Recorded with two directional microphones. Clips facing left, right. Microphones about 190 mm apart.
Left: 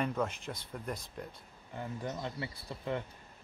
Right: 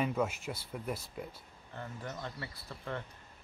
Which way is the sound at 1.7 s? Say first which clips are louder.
Left 4 dB; 15° left (ahead or behind).